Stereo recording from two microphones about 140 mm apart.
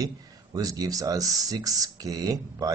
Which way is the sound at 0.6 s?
25° right (ahead or behind).